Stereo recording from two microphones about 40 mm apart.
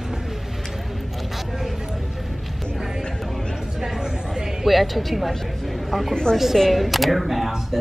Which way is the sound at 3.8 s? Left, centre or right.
Centre.